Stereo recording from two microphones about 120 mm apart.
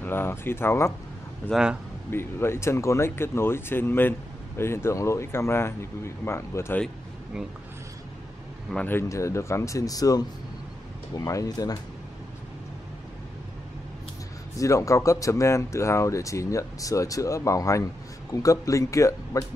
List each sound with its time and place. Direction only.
0.0 s speech: 20° left (ahead or behind)
1.5 s speech: 5° right (ahead or behind)
2.0 s speech: 20° left (ahead or behind)
8.8 s speech: 20° left (ahead or behind)
14.6 s speech: 25° left (ahead or behind)